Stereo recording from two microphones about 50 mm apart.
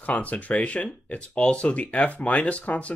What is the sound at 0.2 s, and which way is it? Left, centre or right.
Speech, left.